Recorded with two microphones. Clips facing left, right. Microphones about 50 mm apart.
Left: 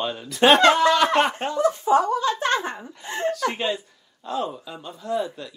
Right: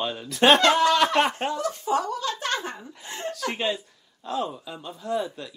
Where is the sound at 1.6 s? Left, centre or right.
Left.